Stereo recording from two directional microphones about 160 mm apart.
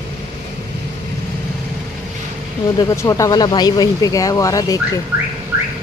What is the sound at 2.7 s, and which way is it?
Speech, 20° left (ahead or behind).